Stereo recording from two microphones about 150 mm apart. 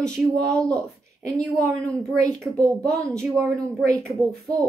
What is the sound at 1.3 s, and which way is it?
Speech, 20° right (ahead or behind).